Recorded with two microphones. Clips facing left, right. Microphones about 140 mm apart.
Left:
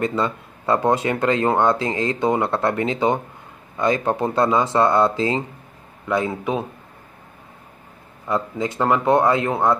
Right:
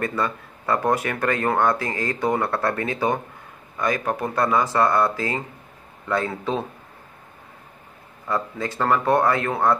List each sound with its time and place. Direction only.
0.0 s a man's voice: 20° left (ahead or behind)
8.3 s speech: 20° left (ahead or behind)